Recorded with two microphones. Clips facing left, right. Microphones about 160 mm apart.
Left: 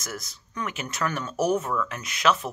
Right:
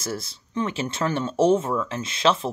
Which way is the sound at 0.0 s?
30° right (ahead or behind).